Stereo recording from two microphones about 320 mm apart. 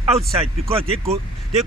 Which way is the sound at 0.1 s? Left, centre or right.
Centre.